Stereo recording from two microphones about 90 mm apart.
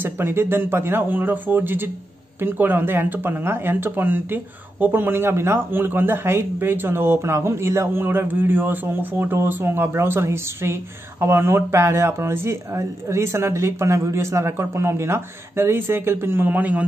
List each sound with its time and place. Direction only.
0.0 s speech: 25° right (ahead or behind)